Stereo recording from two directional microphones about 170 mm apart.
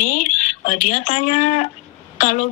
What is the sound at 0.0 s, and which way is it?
A woman's voice, 45° left (ahead or behind).